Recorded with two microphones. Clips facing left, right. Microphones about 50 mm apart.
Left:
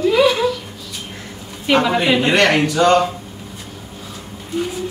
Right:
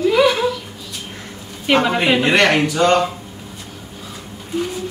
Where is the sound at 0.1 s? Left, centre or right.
Centre.